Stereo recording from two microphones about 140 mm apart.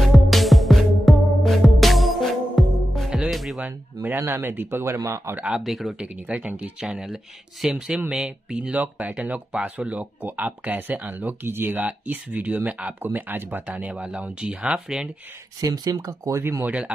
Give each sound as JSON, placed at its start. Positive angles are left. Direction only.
{"t": 0.1, "sound": "music", "side_deg": 0}
{"t": 3.6, "sound": "speech", "side_deg": -15}
{"t": 15.6, "sound": "speech", "side_deg": -25}